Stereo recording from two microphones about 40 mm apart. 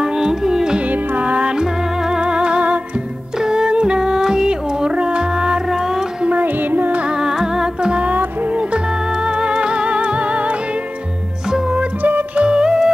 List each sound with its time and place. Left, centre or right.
0.0 s carnatic music: centre
0.7 s music: right
3.3 s music: centre
5.7 s music: centre
6.2 s music: right
7.1 s music: centre
8.0 s music: right
11.7 s music: right
12.4 s music: centre